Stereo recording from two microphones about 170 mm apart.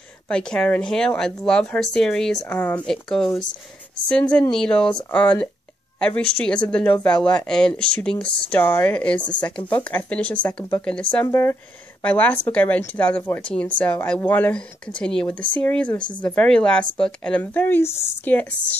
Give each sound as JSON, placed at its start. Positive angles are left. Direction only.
{"t": 0.3, "sound": "speech", "side_deg": 5}